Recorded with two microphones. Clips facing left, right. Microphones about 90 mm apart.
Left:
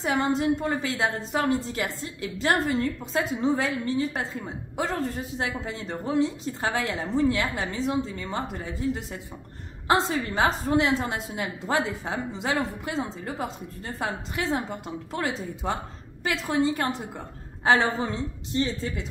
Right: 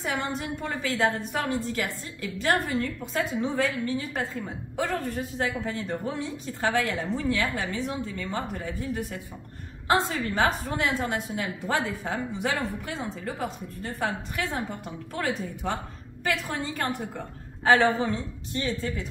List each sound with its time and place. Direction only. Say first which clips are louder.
0.0 s a woman's voice: left 6 dB; 30° left (ahead or behind)